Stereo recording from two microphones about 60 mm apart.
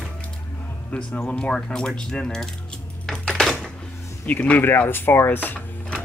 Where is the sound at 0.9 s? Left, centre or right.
Left.